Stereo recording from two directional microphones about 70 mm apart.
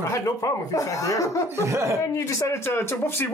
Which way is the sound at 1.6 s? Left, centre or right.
Right.